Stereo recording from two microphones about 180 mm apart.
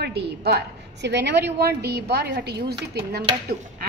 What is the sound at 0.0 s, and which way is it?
A woman's voice, 60° right (ahead or behind).